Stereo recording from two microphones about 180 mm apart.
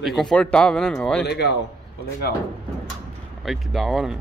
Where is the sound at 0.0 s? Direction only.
Centre (ahead or behind).